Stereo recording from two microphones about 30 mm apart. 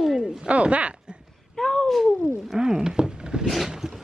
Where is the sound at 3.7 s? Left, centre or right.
Centre.